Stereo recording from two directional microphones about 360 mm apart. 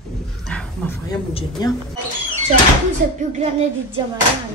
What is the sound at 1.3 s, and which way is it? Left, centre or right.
Speech, centre.